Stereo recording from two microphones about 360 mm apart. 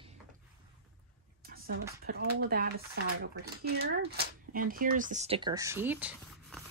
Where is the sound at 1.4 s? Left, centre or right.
Right.